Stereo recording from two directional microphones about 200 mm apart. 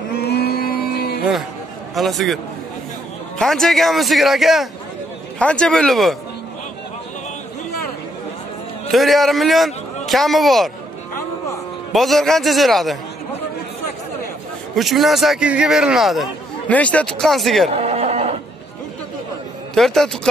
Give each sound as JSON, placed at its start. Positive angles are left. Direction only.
{"t": 0.2, "sound": "carnatic music", "side_deg": 55}
{"t": 2.0, "sound": "a man's voice", "side_deg": 0}
{"t": 8.9, "sound": "a man's voice", "side_deg": 0}
{"t": 11.1, "sound": "music", "side_deg": 15}
{"t": 11.9, "sound": "a man's voice", "side_deg": 0}
{"t": 14.8, "sound": "a man's voice", "side_deg": 0}
{"t": 17.6, "sound": "a sound", "side_deg": -30}
{"t": 19.7, "sound": "a man's voice", "side_deg": 0}